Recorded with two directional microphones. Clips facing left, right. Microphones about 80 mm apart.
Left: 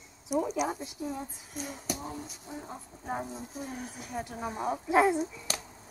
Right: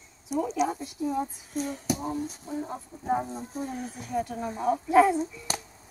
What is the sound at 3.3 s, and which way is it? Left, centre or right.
Speech, right.